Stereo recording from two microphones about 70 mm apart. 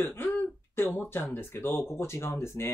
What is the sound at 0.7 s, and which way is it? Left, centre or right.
Speech, left.